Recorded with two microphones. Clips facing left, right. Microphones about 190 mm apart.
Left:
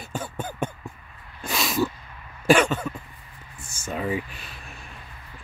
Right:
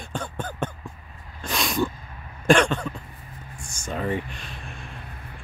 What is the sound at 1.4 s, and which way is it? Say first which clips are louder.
Snort: even; centre (ahead or behind).